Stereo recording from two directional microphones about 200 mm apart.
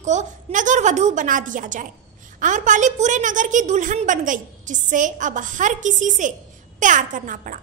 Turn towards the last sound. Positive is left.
turn(degrees=-40)  # may be behind; listen again after turning